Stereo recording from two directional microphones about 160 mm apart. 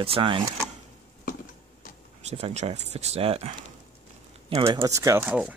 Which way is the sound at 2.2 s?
40° right (ahead or behind).